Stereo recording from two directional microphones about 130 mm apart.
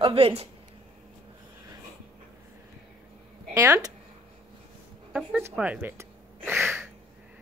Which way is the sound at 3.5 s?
20° right (ahead or behind).